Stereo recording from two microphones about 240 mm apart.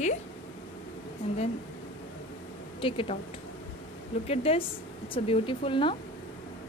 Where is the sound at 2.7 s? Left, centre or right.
Left.